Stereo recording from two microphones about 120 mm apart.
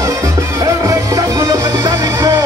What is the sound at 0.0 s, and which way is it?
Music, 25° right (ahead or behind).